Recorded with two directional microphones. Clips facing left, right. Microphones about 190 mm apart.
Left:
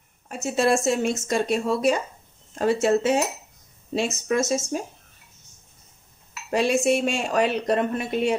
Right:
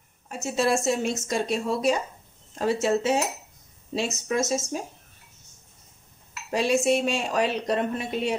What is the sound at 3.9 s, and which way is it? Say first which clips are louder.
Speech: left 3 dB; 55° left (ahead or behind).